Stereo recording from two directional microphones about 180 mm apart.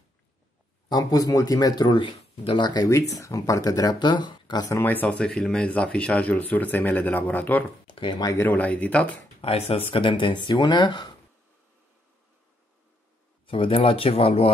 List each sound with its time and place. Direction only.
0.8 s speech: 20° left (ahead or behind)
7.8 s speech: 30° left (ahead or behind); by 9.2 s 10° left (ahead or behind)
9.4 s speech: 35° left (ahead or behind)
13.5 s speech: 30° left (ahead or behind)